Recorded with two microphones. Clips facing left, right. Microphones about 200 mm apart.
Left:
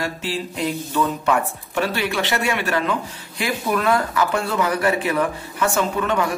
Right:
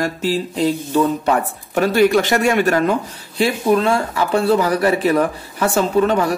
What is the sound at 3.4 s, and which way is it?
Speech, 30° right (ahead or behind).